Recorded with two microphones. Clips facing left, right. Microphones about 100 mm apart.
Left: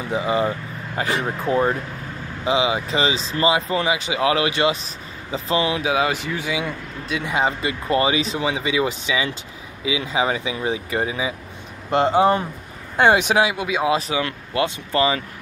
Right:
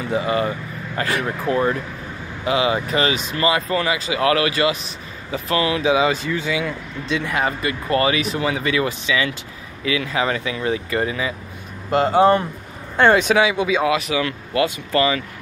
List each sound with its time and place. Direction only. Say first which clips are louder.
0.1 s speech: even; 15° left (ahead or behind)
5.8 s speech: right 3 dB; 5° left (ahead or behind)
11.9 s speech: even; 30° left (ahead or behind)
12.2 s speech: right 2 dB; 15° left (ahead or behind)
13.8 s speech: right 1 dB; 30° left (ahead or behind)